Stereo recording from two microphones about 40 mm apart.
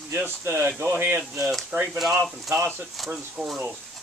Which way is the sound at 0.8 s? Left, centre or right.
Right.